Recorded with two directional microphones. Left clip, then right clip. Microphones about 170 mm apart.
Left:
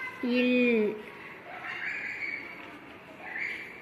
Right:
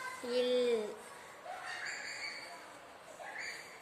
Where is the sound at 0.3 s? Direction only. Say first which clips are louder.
Left 6 dB; 5° right (ahead or behind).